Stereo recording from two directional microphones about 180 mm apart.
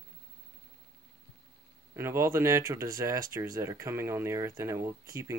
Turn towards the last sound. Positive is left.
turn(degrees=-15)  # may be behind; listen again after turning